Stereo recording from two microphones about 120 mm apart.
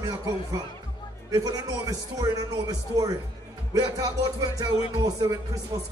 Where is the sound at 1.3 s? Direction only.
30° right (ahead or behind).